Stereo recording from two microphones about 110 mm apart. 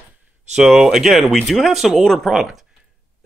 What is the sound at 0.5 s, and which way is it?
Speech, 5° right (ahead or behind).